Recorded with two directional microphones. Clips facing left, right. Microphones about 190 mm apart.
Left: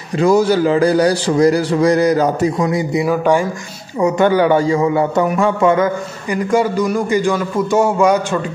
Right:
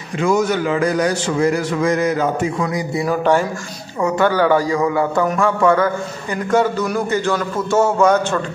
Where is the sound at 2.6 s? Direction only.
20° left (ahead or behind).